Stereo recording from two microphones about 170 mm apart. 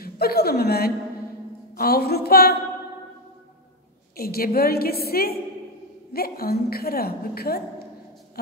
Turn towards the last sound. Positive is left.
turn(degrees=65)  # may be behind; listen again after turning